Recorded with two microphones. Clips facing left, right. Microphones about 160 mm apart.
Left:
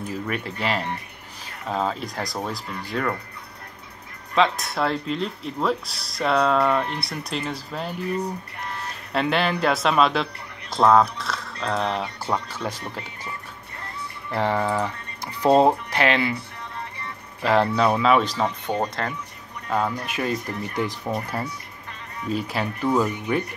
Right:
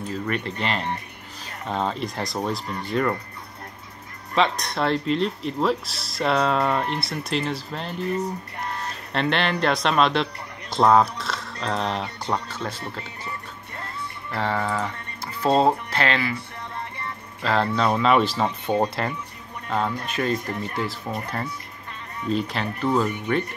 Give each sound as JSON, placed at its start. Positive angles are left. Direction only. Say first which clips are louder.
{"t": 0.1, "sound": "speech", "louder": "right 3 dB", "side_deg": 10}
{"t": 4.4, "sound": "speech", "louder": "left 1 dB", "side_deg": 5}
{"t": 9.1, "sound": "speech", "louder": "left 1 dB", "side_deg": 5}
{"t": 14.3, "sound": "speech", "louder": "left 3 dB", "side_deg": 15}
{"t": 17.4, "sound": "speech", "louder": "left 3 dB", "side_deg": 15}
{"t": 19.7, "sound": "speech", "louder": "left 1 dB", "side_deg": 10}